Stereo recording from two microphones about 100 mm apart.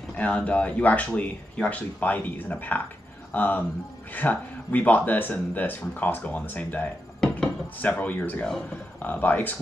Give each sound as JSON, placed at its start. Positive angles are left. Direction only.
{"t": 0.1, "sound": "speech", "side_deg": 15}